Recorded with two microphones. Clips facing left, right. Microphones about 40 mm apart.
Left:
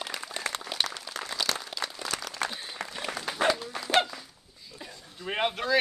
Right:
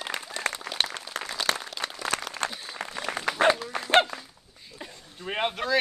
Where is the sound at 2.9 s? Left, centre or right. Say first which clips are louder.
Right 4 dB; right.